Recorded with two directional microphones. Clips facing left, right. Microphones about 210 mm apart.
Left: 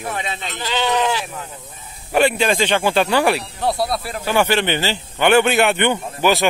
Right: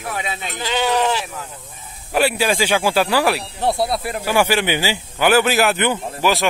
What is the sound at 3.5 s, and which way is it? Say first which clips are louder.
Speech: right 1 dB; 25° right (ahead or behind).